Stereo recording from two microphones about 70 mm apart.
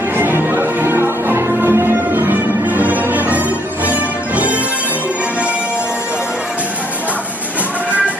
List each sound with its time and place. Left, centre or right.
0.2 s music: right